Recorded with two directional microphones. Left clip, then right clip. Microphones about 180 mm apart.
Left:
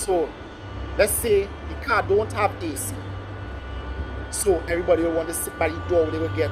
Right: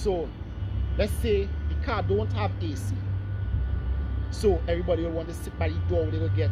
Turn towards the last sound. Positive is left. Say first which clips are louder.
# left 8 dB
turn(degrees=-15)  # may be behind; listen again after turning